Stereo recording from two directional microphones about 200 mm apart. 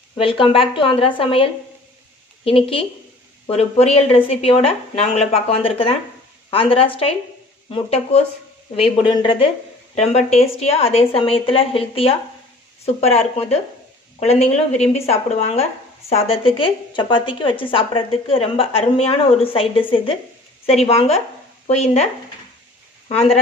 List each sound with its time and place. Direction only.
0.2 s a woman's voice: 25° left (ahead or behind)